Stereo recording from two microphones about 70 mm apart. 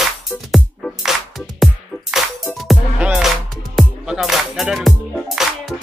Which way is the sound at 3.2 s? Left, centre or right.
Centre.